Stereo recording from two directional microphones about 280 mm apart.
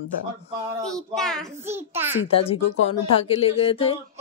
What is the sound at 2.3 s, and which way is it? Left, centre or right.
Speech, centre.